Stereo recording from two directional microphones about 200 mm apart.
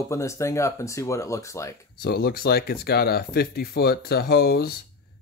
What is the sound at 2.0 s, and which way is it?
Speech, 50° left (ahead or behind).